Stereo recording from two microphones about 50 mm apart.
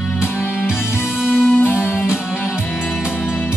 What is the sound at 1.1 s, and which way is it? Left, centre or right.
Music, centre.